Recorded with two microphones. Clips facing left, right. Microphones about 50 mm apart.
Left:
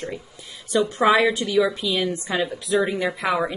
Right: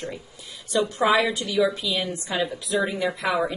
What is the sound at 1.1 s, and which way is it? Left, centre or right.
Speech, left.